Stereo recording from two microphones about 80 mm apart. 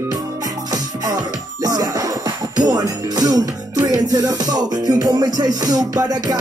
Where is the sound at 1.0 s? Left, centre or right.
Right.